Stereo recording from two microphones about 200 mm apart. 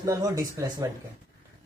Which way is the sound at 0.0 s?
15° right (ahead or behind).